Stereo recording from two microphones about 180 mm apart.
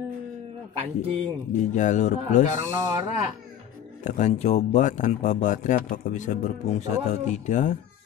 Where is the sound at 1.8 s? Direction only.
40° left (ahead or behind).